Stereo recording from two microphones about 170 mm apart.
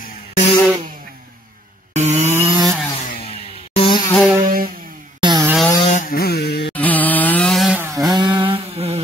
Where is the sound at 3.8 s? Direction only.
25° left (ahead or behind).